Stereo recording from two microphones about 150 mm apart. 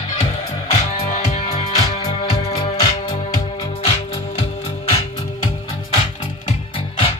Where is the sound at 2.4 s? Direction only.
40° left (ahead or behind).